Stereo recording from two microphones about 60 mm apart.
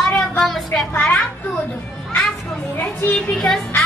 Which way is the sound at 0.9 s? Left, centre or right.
Left.